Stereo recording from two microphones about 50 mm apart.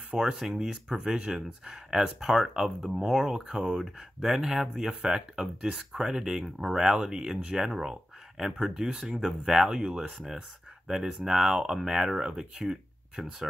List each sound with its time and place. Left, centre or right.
0.4 s speech: centre